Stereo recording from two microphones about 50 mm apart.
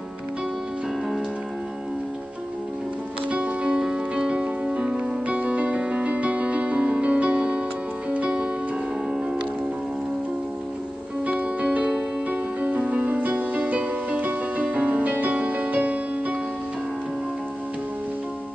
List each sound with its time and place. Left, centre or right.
3.3 s music: right
3.7 s music: centre
11.2 s music: right